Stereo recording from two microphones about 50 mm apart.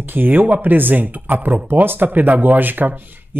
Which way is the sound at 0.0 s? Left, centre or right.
Right.